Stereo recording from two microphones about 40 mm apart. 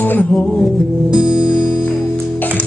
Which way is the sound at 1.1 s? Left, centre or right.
Right.